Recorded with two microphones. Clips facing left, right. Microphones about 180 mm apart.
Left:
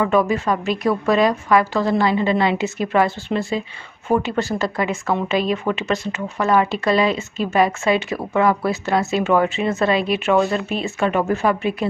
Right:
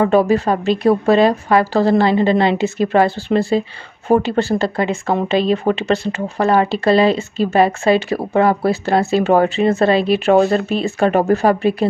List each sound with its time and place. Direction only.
0.0 s a woman's voice: 35° right (ahead or behind)